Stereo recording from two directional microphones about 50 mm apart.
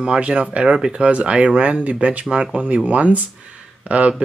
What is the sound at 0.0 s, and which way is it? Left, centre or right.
Speech, centre.